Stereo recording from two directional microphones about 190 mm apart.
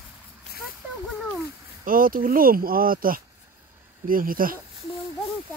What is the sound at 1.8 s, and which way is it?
Speech, 45° right (ahead or behind).